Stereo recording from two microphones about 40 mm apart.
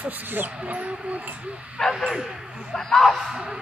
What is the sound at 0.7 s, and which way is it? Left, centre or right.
Speech, right.